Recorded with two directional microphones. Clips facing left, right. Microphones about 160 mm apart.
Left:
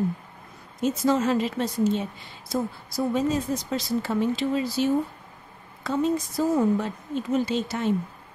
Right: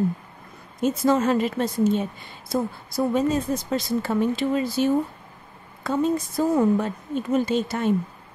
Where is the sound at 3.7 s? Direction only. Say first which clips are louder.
Right 2 dB; 50° right (ahead or behind).